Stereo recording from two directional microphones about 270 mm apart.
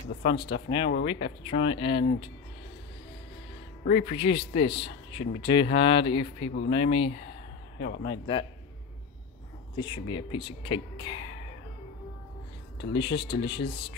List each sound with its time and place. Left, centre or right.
0.2 s speech: centre
3.8 s speech: left
9.8 s speech: centre
12.9 s speech: centre